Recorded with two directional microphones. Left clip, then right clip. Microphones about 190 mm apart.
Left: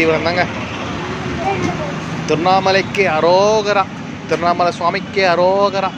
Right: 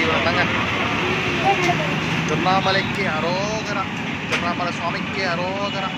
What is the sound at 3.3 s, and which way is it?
Speech, 90° left.